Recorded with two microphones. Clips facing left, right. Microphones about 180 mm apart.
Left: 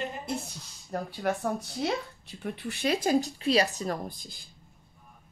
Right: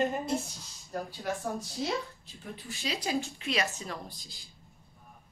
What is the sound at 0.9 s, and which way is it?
Speech, 60° left (ahead or behind).